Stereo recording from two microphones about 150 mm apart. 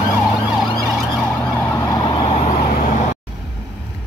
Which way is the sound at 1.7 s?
25° left (ahead or behind).